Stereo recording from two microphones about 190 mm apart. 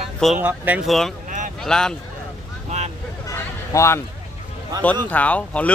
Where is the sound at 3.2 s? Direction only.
15° left (ahead or behind).